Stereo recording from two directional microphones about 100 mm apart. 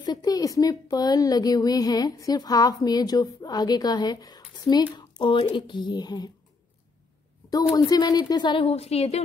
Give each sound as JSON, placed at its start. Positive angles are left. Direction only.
{"t": 0.0, "sound": "a woman's voice", "side_deg": 40}
{"t": 7.7, "sound": "speech", "side_deg": 40}
{"t": 8.6, "sound": "a woman's voice", "side_deg": 90}